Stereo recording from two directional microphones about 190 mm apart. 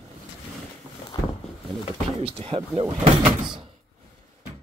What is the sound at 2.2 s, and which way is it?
Speech, 30° right (ahead or behind).